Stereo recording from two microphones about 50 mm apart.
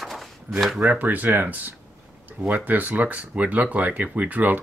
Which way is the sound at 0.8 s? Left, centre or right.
Right.